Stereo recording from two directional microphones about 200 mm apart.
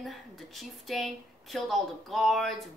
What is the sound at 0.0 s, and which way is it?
A woman's voice, centre (ahead or behind).